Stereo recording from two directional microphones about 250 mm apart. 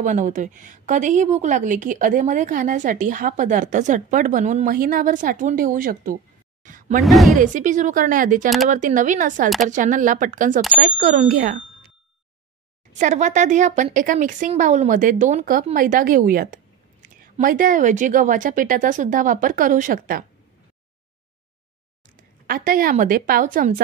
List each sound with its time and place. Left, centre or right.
0.0 s speech: right
7.0 s a woman's voice: centre
7.3 s speech: right
12.9 s speech: right
22.5 s speech: right